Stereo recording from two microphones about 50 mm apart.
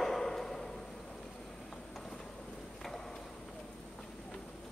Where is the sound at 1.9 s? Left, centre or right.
Centre.